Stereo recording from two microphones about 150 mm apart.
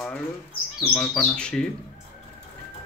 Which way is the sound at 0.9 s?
10° left (ahead or behind).